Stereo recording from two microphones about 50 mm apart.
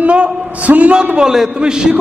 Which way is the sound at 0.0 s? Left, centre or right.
Right.